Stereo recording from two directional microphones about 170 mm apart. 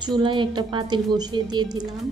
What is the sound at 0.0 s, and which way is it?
A woman's voice, 25° right (ahead or behind).